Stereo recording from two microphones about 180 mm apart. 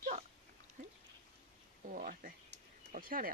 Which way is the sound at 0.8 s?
55° right (ahead or behind).